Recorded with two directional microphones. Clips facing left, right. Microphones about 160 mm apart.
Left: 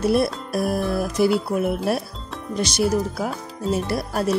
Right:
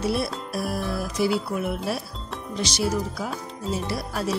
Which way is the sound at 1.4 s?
45° left (ahead or behind).